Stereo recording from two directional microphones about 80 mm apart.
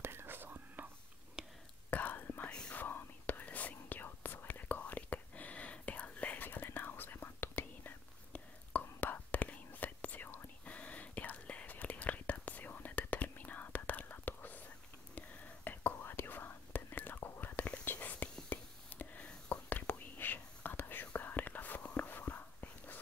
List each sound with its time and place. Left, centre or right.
0.0 s whispering: right
1.4 s whispering: centre
1.9 s whispering: left